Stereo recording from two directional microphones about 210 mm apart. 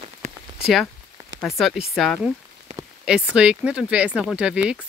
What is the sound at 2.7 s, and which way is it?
Rain on surface, 35° right (ahead or behind).